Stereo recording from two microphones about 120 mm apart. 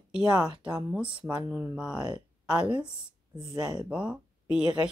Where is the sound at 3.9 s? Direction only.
10° right (ahead or behind).